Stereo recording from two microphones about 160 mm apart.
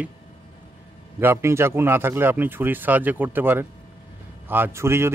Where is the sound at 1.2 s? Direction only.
15° right (ahead or behind).